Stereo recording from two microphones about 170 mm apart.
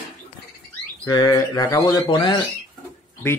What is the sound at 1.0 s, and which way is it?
Speech, 25° left (ahead or behind).